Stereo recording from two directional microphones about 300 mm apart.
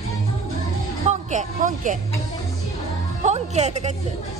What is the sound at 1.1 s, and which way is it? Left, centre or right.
Speech, right.